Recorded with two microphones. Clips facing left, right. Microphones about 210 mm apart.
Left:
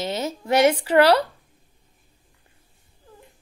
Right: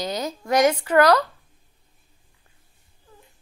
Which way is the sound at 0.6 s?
10° left (ahead or behind).